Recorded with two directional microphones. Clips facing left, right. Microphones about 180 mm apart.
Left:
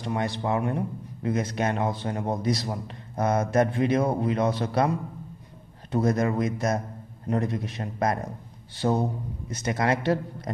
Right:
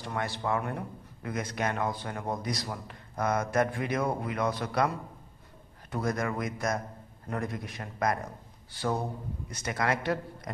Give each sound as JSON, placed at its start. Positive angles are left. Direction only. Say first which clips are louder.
{"t": 0.0, "sound": "a man's voice", "louder": "left 5 dB", "side_deg": 20}